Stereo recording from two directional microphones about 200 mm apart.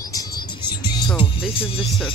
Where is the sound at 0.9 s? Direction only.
20° left (ahead or behind).